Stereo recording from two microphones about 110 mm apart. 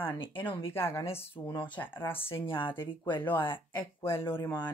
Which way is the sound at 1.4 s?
40° left (ahead or behind).